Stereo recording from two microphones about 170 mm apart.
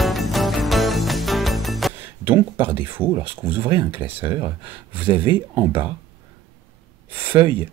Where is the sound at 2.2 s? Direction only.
10° right (ahead or behind).